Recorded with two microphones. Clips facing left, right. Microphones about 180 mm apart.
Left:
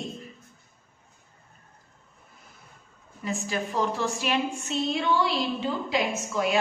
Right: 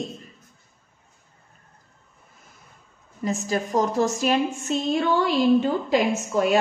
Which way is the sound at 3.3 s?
40° right (ahead or behind).